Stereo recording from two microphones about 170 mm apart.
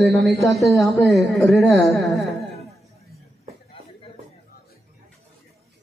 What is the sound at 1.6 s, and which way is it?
Speech, 15° left (ahead or behind).